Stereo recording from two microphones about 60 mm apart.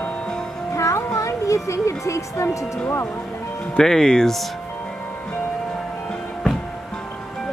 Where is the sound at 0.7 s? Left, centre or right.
Left.